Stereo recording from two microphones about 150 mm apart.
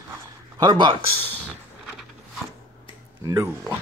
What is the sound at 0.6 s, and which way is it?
Speech, 30° right (ahead or behind).